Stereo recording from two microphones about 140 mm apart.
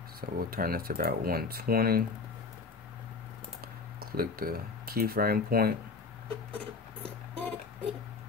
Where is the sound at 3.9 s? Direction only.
90° right.